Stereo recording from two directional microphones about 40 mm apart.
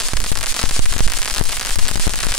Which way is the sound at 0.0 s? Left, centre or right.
Centre.